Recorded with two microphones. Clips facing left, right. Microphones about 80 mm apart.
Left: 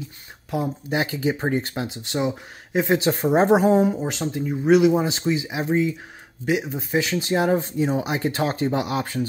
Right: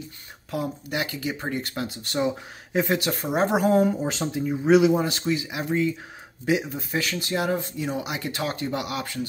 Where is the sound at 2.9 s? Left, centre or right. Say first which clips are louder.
Left 5 dB; left.